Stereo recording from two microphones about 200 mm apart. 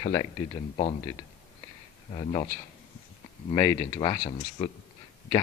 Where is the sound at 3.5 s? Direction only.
20° left (ahead or behind).